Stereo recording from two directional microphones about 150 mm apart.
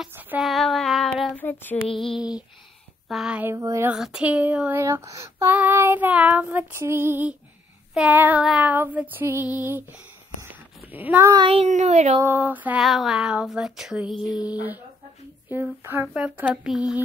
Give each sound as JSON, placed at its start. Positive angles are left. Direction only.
{"t": 0.4, "sound": "child singing", "side_deg": 0}
{"t": 1.9, "sound": "female singing", "side_deg": 35}
{"t": 3.1, "sound": "female singing", "side_deg": -5}
{"t": 3.5, "sound": "a sound", "side_deg": -20}
{"t": 3.9, "sound": "child singing", "side_deg": -5}
{"t": 10.4, "sound": "a sound", "side_deg": -10}
{"t": 11.3, "sound": "child singing", "side_deg": -35}
{"t": 11.7, "sound": "speech", "side_deg": -50}
{"t": 12.2, "sound": "child singing", "side_deg": -15}
{"t": 12.8, "sound": "female singing", "side_deg": 0}
{"t": 14.3, "sound": "child singing", "side_deg": -10}